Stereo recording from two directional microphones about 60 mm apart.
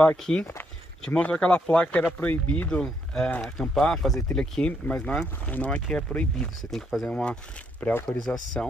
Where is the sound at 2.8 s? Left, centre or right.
Centre.